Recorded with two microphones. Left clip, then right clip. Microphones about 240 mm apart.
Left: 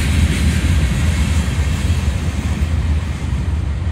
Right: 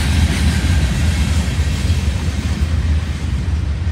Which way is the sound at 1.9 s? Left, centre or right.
Left.